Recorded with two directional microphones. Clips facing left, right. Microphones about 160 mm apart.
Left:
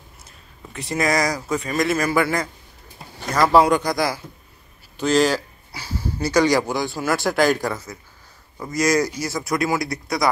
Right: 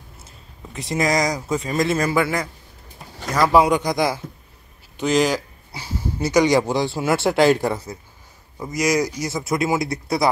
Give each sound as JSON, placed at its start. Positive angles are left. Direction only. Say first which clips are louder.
{"t": 0.9, "sound": "a man's voice", "louder": "right 1 dB", "side_deg": -20}
{"t": 8.5, "sound": "speech", "louder": "left 1 dB", "side_deg": -15}